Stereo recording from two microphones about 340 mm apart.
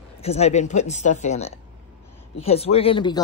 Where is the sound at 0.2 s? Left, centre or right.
Centre.